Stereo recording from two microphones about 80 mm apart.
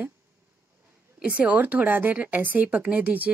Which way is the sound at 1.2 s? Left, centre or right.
Centre.